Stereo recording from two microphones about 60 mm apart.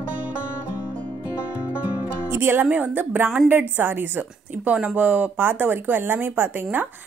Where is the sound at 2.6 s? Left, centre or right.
Right.